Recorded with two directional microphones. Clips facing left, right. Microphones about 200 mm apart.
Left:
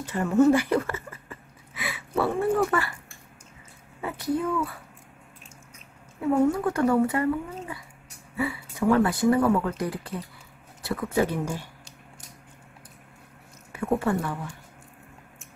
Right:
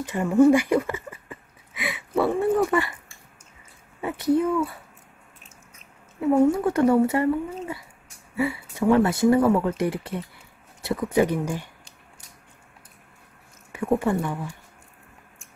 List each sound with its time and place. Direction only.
0.1 s speech: 10° right (ahead or behind)
4.0 s speech: 25° right (ahead or behind)
6.5 s speech: 20° right (ahead or behind)
13.7 s speech: 15° right (ahead or behind)